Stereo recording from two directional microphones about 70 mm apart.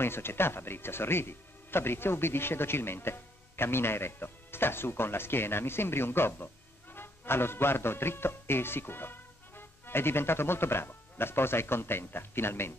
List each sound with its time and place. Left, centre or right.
0.0 s speech: left